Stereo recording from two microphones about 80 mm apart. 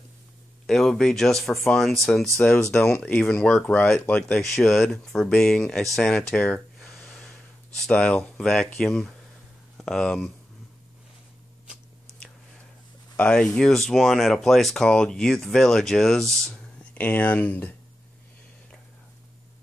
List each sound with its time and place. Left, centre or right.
0.7 s speech: centre
7.1 s snort: centre
7.8 s speech: centre
13.1 s speech: centre
16.9 s speech: centre